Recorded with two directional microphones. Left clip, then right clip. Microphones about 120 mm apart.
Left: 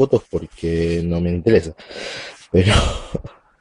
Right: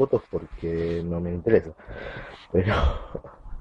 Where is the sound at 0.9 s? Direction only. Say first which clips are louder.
Left 7 dB; 35° left (ahead or behind).